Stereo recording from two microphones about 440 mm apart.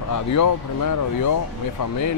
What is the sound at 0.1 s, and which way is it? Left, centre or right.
Speech, left.